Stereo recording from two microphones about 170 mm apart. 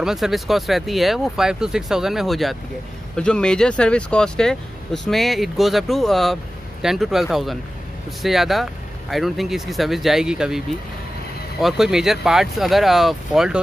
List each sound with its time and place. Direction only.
0.0 s speech: centre (ahead or behind)
11.6 s speech: centre (ahead or behind)